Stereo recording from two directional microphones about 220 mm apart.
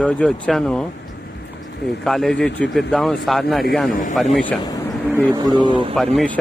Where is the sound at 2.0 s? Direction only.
Centre (ahead or behind).